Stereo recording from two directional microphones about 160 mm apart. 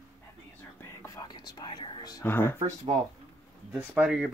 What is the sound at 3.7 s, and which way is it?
Speech, 5° right (ahead or behind).